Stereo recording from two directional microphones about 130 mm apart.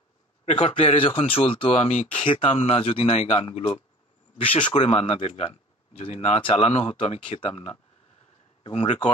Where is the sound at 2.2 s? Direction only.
45° left (ahead or behind).